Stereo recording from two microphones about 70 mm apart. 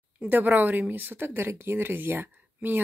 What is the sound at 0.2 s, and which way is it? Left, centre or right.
Speech, right.